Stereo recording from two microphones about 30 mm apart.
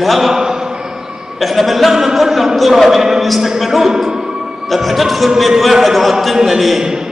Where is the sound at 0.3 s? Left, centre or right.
Centre.